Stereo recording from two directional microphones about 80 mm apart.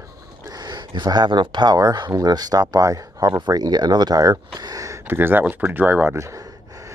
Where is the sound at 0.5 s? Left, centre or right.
Right.